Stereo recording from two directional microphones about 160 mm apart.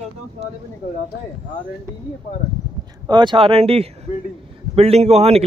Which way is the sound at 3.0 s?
30° right (ahead or behind).